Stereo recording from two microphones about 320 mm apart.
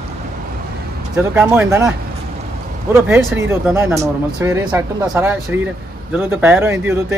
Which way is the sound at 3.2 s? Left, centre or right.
Centre.